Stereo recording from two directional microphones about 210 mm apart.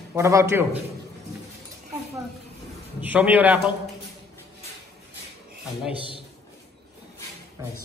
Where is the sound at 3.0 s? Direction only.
10° right (ahead or behind).